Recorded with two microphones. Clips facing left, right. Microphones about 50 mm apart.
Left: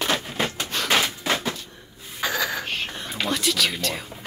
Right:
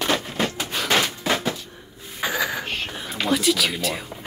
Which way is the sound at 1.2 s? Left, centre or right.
Centre.